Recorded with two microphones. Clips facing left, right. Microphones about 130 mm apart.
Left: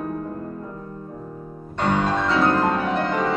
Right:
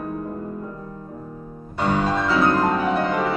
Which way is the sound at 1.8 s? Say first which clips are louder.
Even; 5° right (ahead or behind).